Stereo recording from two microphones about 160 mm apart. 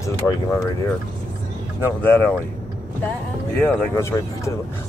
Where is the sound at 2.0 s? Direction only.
10° left (ahead or behind).